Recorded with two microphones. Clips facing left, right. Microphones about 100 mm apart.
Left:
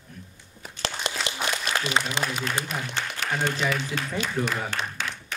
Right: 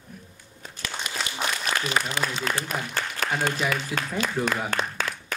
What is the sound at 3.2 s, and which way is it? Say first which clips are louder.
Applause: right 2 dB; 45° right (ahead or behind).